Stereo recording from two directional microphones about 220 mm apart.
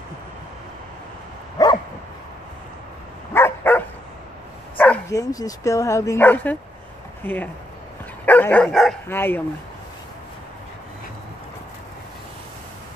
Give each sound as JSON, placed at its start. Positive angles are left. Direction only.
{"t": 1.6, "sound": "dog", "side_deg": 15}
{"t": 3.3, "sound": "dog", "side_deg": 10}
{"t": 4.7, "sound": "speech", "side_deg": 5}